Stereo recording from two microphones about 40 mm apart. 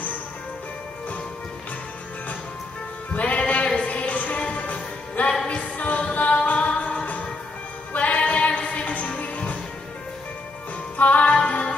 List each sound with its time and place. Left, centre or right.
3.2 s music: left
11.0 s music: left